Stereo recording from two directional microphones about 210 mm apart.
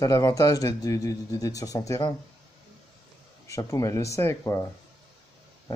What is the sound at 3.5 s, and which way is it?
Speech, 15° left (ahead or behind).